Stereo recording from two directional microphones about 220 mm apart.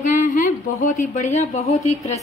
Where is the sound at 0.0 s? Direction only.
35° left (ahead or behind).